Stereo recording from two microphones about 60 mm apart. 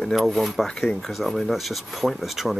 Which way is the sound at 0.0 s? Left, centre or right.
Centre.